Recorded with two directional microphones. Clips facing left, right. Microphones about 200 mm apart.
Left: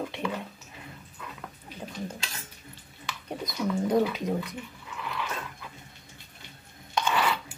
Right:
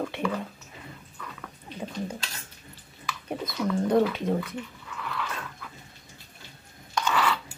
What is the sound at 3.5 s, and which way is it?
Bird, 10° left (ahead or behind).